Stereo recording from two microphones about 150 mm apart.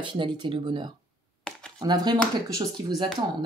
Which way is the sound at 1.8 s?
25° right (ahead or behind).